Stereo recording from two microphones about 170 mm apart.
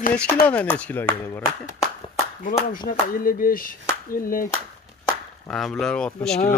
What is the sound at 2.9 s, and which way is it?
Speech, 55° left (ahead or behind).